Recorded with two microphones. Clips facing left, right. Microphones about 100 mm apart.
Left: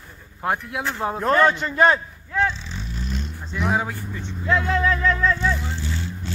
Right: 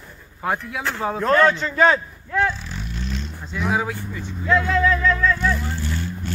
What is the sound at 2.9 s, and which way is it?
Vehicle, 45° left (ahead or behind).